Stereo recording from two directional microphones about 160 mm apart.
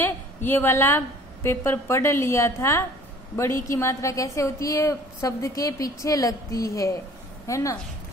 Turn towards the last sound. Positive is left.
turn(degrees=20)  # may be behind; listen again after turning